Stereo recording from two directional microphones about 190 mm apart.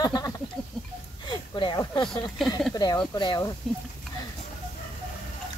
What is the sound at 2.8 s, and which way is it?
Speech, 20° left (ahead or behind).